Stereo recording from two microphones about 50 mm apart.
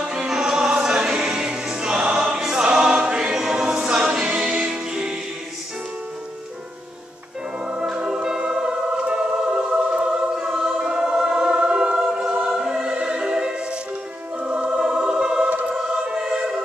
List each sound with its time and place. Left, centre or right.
0.0 s music: centre
3.3 s choir: centre
4.3 s music: centre
7.6 s music: centre
9.8 s choir: centre
12.4 s music: centre
14.4 s choir: right